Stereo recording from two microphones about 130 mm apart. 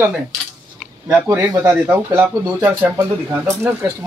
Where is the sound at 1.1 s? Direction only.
15° right (ahead or behind).